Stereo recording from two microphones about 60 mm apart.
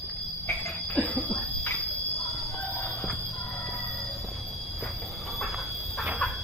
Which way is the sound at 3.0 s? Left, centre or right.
Centre.